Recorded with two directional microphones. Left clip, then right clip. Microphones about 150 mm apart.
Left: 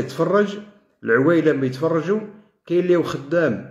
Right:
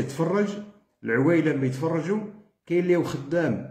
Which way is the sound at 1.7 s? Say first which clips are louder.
Left 6 dB; 10° right (ahead or behind).